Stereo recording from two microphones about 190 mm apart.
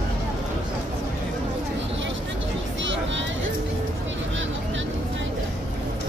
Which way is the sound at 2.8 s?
80° right.